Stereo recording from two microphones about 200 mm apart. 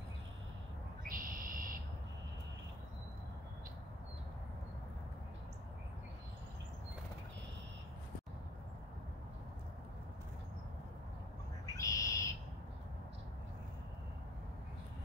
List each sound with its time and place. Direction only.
1.0 s owl: 45° right (ahead or behind)
11.6 s owl: 15° left (ahead or behind)